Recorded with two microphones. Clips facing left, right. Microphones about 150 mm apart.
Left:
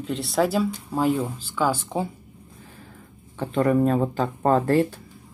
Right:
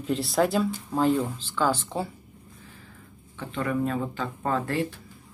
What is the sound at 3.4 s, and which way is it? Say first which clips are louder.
Speech: left 7 dB; 40° left (ahead or behind).